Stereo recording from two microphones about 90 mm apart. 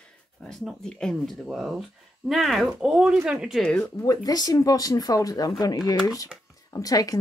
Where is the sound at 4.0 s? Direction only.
40° left (ahead or behind).